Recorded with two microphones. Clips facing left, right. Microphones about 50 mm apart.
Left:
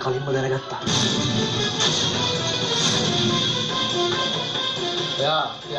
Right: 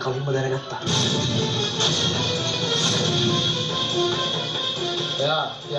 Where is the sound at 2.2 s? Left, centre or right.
Right.